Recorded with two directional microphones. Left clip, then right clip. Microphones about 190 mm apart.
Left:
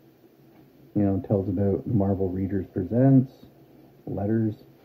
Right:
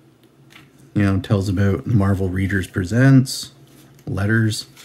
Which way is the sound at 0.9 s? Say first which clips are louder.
Right 3 dB; 15° right (ahead or behind).